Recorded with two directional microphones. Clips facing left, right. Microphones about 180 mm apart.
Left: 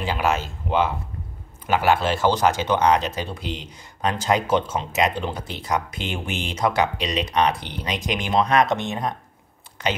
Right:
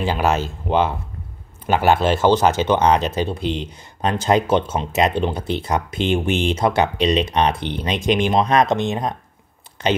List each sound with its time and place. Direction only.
0.0 s speech: 35° right (ahead or behind)